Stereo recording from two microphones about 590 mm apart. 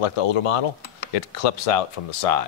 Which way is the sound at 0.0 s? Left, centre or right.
Left.